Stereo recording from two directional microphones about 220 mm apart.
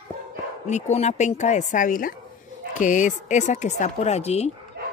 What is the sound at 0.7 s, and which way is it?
Speech, 30° left (ahead or behind).